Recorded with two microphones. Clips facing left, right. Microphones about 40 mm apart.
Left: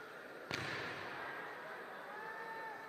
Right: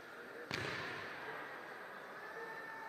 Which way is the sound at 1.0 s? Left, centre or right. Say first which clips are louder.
Left 1 dB; centre.